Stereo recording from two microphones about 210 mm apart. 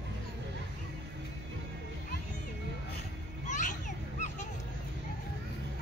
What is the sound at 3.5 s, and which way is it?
Children playing, 35° left (ahead or behind).